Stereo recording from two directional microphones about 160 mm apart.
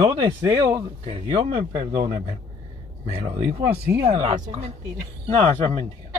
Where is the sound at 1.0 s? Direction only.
40° right (ahead or behind).